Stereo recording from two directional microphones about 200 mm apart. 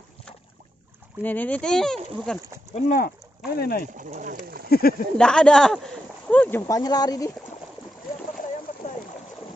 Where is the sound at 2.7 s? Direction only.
45° left (ahead or behind).